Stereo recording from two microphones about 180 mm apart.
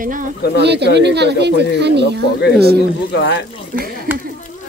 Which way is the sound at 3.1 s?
70° left (ahead or behind).